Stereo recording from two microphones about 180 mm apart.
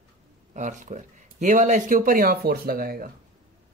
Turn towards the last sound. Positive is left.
turn(degrees=-55)  # may be behind; listen again after turning